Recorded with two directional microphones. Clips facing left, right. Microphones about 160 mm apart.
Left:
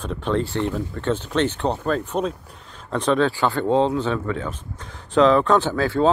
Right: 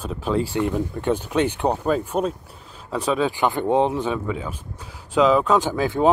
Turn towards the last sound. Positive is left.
turn(degrees=-15)  # may be behind; listen again after turning